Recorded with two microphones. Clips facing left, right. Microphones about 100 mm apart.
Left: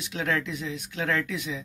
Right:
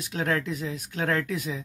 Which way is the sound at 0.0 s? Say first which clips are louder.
Right 1 dB; 40° right (ahead or behind).